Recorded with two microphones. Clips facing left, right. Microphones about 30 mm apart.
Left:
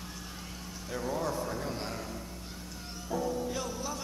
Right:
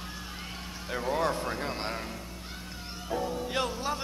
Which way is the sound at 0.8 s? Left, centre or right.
Right.